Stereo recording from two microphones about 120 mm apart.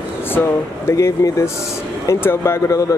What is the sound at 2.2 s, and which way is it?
Speech, 20° left (ahead or behind).